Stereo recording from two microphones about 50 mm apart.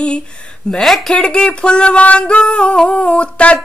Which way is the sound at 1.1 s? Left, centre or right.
Left.